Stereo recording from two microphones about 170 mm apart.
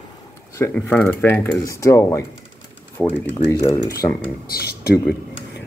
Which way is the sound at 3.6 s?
20° left (ahead or behind).